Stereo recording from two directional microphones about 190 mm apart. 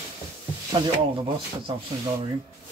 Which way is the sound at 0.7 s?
25° right (ahead or behind).